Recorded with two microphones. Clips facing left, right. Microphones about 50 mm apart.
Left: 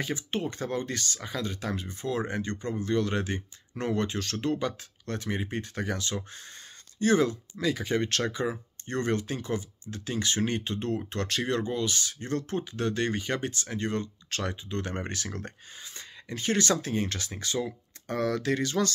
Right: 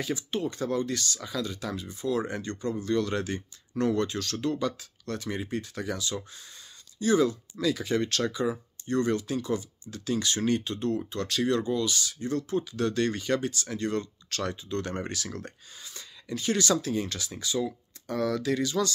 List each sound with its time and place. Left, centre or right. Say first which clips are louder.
0.0 s speech: right 1 dB; left
2.1 s speech: even; left
7.5 s speech: left 1 dB; left
11.1 s speech: right 2 dB; left
12.7 s speech: even; left